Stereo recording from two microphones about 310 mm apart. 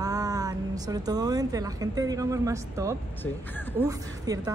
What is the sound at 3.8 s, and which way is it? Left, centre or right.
Speech, centre.